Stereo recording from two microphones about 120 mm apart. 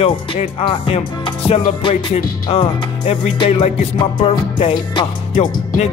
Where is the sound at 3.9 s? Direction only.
45° left (ahead or behind).